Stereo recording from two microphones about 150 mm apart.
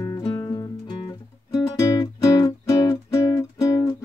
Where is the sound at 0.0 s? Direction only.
30° left (ahead or behind).